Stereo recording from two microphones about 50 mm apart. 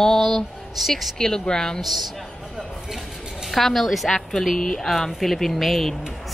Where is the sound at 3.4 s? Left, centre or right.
Centre.